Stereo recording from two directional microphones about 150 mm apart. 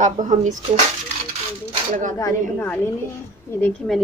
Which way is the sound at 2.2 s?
20° left (ahead or behind).